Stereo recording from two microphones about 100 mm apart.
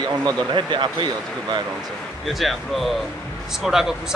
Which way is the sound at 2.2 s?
Centre (ahead or behind).